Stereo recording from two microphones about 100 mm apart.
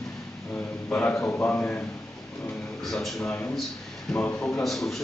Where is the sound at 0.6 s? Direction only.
15° left (ahead or behind).